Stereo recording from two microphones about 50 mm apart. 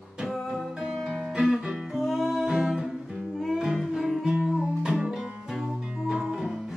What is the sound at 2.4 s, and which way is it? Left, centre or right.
Music, centre.